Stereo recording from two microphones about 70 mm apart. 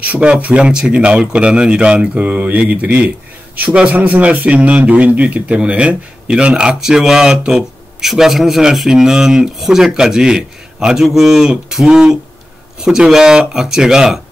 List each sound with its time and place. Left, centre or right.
0.0 s a man's voice: centre